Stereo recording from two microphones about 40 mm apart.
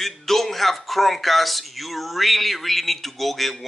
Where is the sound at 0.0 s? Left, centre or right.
Centre.